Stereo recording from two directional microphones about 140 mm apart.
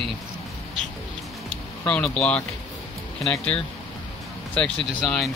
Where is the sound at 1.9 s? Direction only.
5° left (ahead or behind).